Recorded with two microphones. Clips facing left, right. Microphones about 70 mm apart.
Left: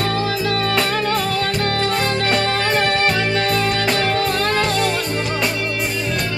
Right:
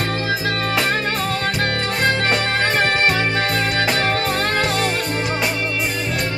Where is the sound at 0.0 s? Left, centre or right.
Right.